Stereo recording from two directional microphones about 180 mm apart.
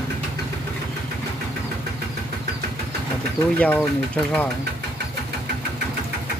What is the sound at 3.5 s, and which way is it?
Speech, 10° left (ahead or behind).